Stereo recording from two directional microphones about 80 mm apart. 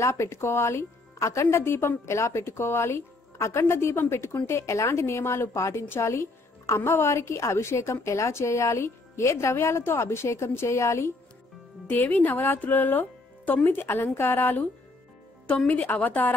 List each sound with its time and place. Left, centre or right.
0.0 s a woman's voice: left
15.4 s speech: centre